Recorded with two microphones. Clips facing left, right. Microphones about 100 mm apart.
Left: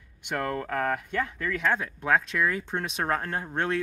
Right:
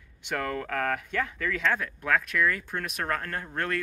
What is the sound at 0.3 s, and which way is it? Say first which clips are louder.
Speech: left 1 dB; 10° left (ahead or behind).